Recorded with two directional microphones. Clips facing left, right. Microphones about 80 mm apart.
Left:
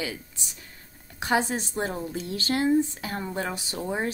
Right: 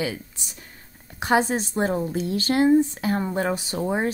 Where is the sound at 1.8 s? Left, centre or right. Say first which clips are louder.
Right 7 dB; right.